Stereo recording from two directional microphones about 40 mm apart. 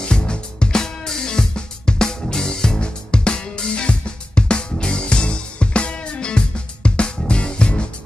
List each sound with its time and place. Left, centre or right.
0.0 s music: left